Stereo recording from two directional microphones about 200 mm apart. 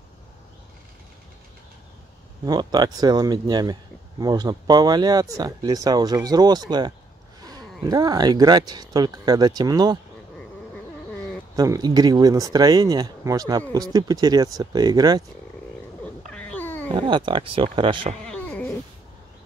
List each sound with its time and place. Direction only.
2.4 s speech: 20° right (ahead or behind)
11.5 s speech: 20° right (ahead or behind)
16.3 s cat: 5° left (ahead or behind)
16.9 s speech: 25° right (ahead or behind)
18.3 s cat: 5° left (ahead or behind)